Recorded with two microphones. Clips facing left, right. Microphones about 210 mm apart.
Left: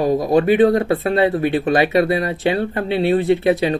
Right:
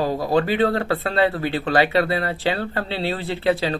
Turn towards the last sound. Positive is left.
turn(degrees=20)  # may be behind; listen again after turning